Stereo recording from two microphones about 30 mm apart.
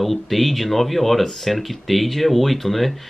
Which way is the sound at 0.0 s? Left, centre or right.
Centre.